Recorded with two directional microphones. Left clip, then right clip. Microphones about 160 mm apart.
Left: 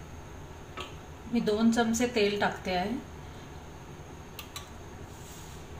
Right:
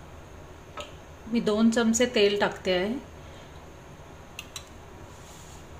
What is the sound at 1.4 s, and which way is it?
A woman's voice, 90° right.